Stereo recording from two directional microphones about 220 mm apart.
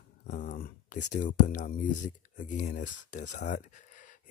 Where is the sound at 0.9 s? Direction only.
35° left (ahead or behind).